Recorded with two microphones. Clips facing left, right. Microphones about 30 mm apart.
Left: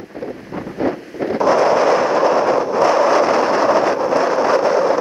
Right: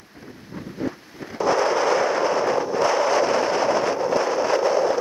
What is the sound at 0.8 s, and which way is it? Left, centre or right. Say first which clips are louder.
Wind noise: left 12 dB; left.